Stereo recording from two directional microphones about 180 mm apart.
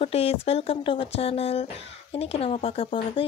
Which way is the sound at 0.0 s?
35° left (ahead or behind).